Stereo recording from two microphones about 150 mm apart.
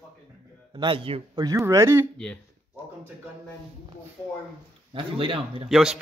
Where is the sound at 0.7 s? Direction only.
35° right (ahead or behind).